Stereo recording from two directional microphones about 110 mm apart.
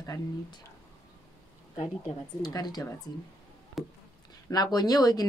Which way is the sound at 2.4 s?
35° left (ahead or behind).